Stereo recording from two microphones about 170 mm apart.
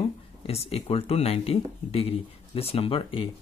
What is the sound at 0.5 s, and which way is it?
Speech, 35° left (ahead or behind).